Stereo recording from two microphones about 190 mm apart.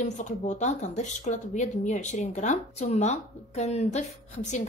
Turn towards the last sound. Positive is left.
turn(degrees=35)  # may be behind; listen again after turning